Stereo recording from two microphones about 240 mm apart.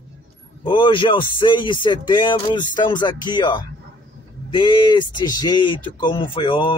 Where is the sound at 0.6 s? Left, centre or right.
Left.